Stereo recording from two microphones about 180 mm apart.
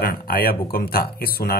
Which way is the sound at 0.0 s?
55° left (ahead or behind).